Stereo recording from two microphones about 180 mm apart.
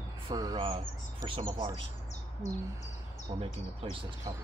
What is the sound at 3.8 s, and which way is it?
Speech, 30° right (ahead or behind).